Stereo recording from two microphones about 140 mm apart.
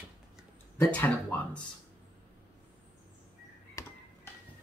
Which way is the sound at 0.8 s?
15° left (ahead or behind).